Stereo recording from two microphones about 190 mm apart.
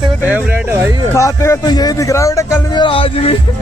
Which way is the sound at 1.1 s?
15° left (ahead or behind).